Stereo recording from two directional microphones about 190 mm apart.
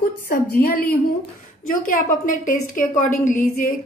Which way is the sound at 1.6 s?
45° left (ahead or behind).